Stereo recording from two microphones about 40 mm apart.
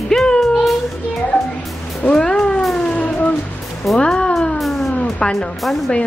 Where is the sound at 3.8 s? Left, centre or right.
Centre.